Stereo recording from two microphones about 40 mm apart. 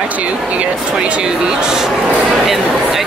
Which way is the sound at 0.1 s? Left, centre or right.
Right.